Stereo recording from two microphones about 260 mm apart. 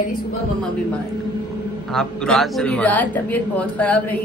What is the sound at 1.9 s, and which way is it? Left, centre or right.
Speech, centre.